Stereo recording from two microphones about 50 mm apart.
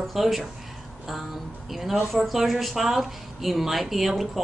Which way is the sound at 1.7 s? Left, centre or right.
Centre.